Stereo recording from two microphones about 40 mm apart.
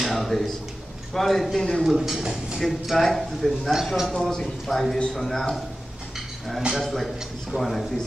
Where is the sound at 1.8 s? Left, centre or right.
Centre.